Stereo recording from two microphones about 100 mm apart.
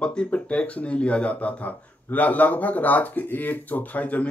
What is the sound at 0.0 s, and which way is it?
Speech, 10° left (ahead or behind).